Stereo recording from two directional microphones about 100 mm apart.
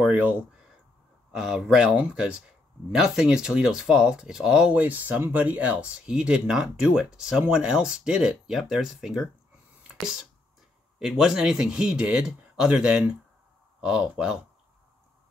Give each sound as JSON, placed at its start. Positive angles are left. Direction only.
{"t": 0.0, "sound": "speech", "side_deg": -15}
{"t": 11.0, "sound": "speech", "side_deg": -5}